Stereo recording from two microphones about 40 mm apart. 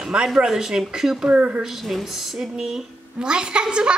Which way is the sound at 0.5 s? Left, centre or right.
Centre.